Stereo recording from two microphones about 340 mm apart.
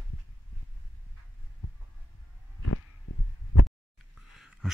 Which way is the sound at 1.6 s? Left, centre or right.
Left.